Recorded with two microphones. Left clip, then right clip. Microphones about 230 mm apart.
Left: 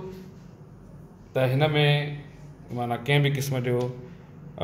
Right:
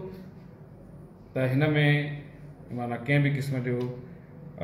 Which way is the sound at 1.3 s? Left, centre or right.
Left.